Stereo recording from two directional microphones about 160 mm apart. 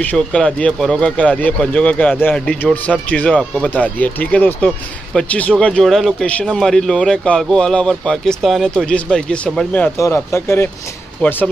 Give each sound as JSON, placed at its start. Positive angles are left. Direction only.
{"t": 0.0, "sound": "speech", "side_deg": 10}